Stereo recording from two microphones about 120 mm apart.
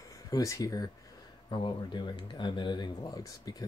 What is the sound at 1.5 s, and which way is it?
Speech, 40° left (ahead or behind).